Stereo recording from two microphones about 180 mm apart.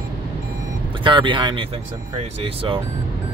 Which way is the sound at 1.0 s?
25° right (ahead or behind).